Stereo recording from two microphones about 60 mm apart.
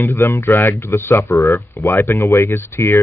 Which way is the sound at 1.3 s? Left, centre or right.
Left.